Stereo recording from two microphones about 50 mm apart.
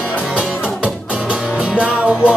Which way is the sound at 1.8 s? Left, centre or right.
Right.